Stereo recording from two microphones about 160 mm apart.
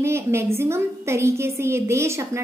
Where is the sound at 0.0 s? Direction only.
15° right (ahead or behind).